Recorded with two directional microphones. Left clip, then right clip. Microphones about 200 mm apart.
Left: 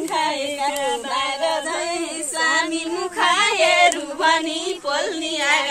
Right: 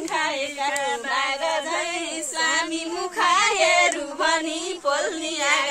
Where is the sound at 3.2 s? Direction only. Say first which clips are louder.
Left 2 dB; 55° right (ahead or behind).